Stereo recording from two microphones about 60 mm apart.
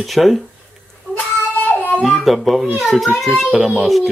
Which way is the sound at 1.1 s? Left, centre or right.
Right.